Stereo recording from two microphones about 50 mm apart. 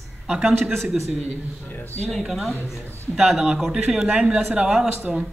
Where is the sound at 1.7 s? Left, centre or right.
Left.